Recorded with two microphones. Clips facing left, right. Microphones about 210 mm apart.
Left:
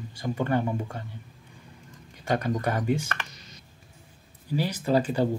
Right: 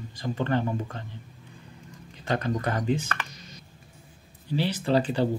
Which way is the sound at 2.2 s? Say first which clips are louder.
Left 1 dB; 10° left (ahead or behind).